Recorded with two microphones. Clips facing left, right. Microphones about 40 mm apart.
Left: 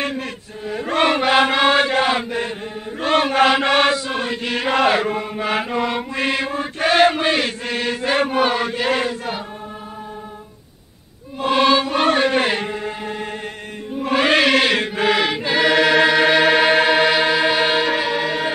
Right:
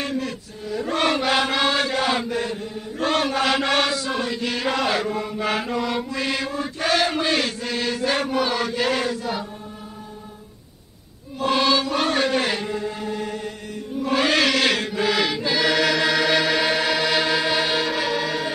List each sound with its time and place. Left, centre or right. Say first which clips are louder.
0.0 s a sound: left 2 dB; left
1.0 s chant: left 6 dB; left
8.7 s chant: left 2 dB; left
11.4 s chant: left 4 dB; left
14.8 s chant: left 4 dB; left
17.1 s music: left 4 dB; left
17.4 s music: left 5 dB; left